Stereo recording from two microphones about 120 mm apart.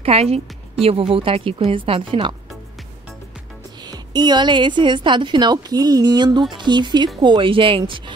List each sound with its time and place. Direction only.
0.0 s a woman's voice: 55° right (ahead or behind)
3.8 s a woman's voice: 35° right (ahead or behind)